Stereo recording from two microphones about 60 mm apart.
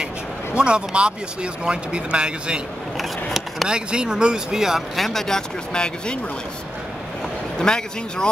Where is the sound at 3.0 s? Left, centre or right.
Centre.